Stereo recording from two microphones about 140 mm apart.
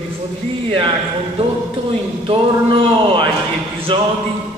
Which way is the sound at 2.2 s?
35° right (ahead or behind).